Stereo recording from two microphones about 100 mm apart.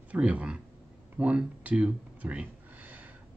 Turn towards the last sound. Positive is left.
turn(degrees=-15)  # may be behind; listen again after turning